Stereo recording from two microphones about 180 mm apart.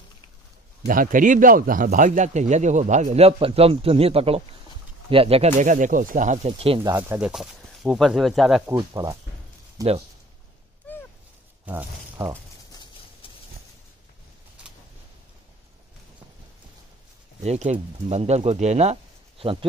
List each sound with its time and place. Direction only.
0.8 s speech: 50° right (ahead or behind)
7.0 s speech: 10° right (ahead or behind)
8.6 s speech: 20° right (ahead or behind)
11.6 s speech: 10° right (ahead or behind)
17.4 s speech: 40° right (ahead or behind)